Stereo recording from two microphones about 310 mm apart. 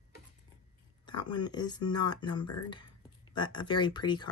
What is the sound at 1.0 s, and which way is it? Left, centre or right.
Speech, centre.